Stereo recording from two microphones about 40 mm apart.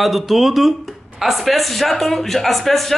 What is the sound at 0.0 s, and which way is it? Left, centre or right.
Speech, centre.